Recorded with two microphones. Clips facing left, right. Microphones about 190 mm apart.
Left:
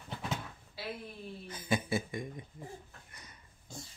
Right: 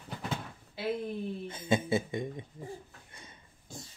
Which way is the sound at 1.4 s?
25° right (ahead or behind).